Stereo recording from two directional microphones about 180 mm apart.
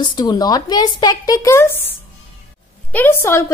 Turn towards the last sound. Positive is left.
turn(degrees=15)  # may be behind; listen again after turning